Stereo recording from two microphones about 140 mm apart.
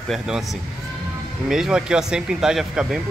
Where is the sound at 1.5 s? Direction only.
5° right (ahead or behind).